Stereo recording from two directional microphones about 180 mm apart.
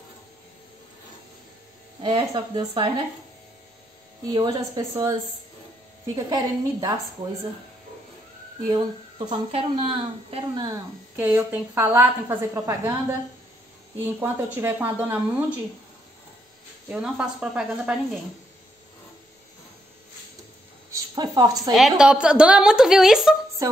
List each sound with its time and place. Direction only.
2.0 s a woman's voice: 25° right (ahead or behind)
4.3 s a woman's voice: 25° right (ahead or behind)
6.1 s a woman's voice: 20° right (ahead or behind)
8.6 s a woman's voice: 25° right (ahead or behind)
11.1 s a woman's voice: 10° right (ahead or behind)
13.9 s a woman's voice: 10° right (ahead or behind)
16.9 s a woman's voice: 5° right (ahead or behind)
20.9 s a woman's voice: 25° right (ahead or behind)
21.7 s a woman's voice: 5° right (ahead or behind)